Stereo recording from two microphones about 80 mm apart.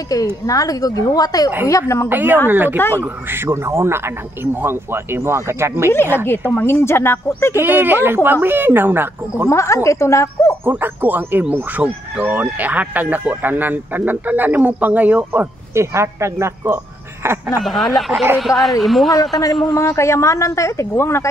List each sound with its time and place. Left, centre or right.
0.1 s a woman's voice: left
1.7 s speech: left
2.0 s speech: right
6.1 s speech: left
7.5 s speech: right
9.5 s speech: left
10.6 s speech: right
15.7 s speech: right
17.6 s speech: centre
19.1 s a woman's voice: left